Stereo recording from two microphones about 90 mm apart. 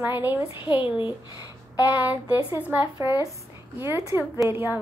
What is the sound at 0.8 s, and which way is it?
Speech, 65° left (ahead or behind).